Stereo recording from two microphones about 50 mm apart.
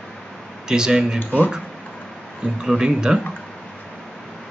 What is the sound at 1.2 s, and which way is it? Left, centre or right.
Speech, left.